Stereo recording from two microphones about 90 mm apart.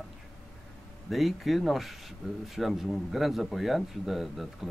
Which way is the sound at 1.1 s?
Centre (ahead or behind).